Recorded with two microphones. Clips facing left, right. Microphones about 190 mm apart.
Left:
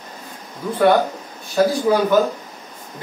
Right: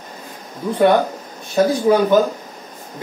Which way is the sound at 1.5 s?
20° right (ahead or behind).